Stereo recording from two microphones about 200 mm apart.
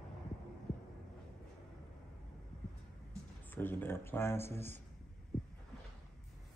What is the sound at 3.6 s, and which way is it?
Speech, 10° left (ahead or behind).